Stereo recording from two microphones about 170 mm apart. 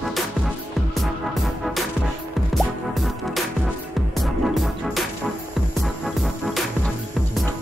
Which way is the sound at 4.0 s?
Centre (ahead or behind).